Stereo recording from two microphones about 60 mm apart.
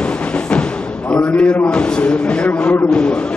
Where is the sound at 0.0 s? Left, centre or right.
Centre.